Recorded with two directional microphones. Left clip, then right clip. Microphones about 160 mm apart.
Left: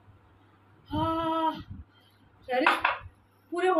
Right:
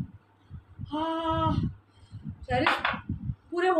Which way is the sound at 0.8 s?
15° right (ahead or behind).